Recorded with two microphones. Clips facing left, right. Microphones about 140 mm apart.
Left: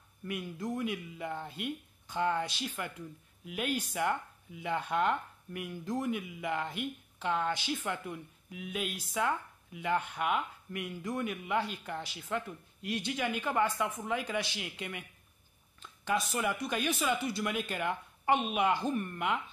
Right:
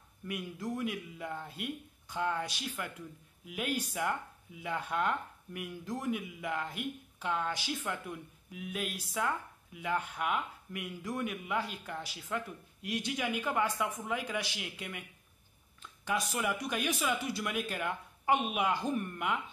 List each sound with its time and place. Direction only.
0.3 s speech: 5° right (ahead or behind)
16.1 s speech: 5° right (ahead or behind)